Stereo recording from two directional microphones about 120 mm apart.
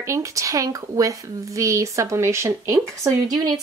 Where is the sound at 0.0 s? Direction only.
25° right (ahead or behind).